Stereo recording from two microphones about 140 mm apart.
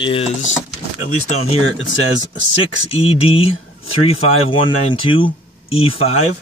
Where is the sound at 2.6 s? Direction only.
45° left (ahead or behind).